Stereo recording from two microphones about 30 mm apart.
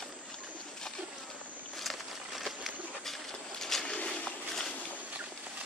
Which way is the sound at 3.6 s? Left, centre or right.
Centre.